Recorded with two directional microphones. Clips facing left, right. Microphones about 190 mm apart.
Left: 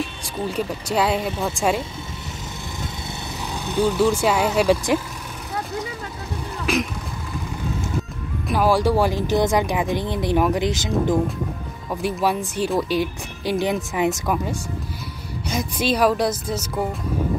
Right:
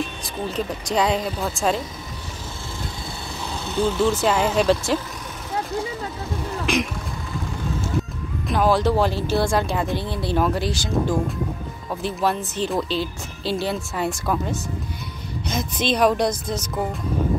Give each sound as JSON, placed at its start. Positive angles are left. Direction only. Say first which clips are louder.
{"t": 0.2, "sound": "speech", "louder": "left 1 dB", "side_deg": 10}
{"t": 3.5, "sound": "speech", "louder": "left 2 dB", "side_deg": 15}
{"t": 6.6, "sound": "a sound", "louder": "left 1 dB", "side_deg": 5}
{"t": 8.5, "sound": "speech", "louder": "left 1 dB", "side_deg": 10}